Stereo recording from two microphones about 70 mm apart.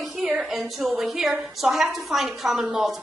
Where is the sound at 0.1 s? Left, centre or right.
Centre.